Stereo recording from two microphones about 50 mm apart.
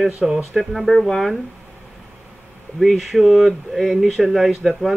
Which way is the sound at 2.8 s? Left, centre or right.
Centre.